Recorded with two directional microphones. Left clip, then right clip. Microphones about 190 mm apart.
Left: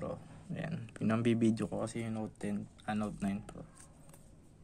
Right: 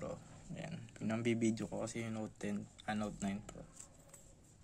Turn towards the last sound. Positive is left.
turn(degrees=5)  # may be behind; listen again after turning